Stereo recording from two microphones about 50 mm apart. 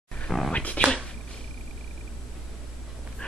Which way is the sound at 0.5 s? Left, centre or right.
Left.